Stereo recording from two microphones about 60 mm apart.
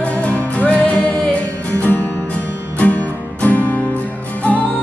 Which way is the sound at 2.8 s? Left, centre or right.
Left.